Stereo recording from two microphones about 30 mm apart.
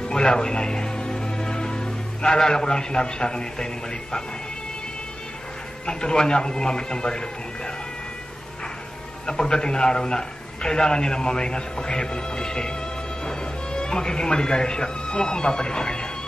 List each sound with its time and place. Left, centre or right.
0.0 s a man's voice: left
5.9 s a man's voice: left
9.2 s a man's voice: left